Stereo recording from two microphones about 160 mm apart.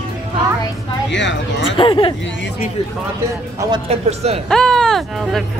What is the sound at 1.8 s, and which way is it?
Speech, 30° left (ahead or behind).